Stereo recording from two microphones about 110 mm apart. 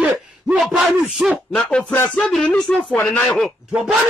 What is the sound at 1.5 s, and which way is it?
A man's voice, 10° left (ahead or behind).